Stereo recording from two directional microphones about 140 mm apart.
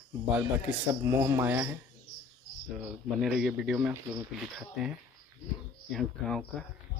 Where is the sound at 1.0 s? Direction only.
20° right (ahead or behind).